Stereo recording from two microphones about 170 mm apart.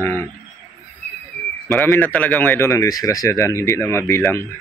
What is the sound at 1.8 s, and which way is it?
Speech, 10° left (ahead or behind).